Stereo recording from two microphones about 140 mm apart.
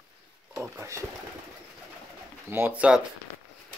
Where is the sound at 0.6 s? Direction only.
20° right (ahead or behind).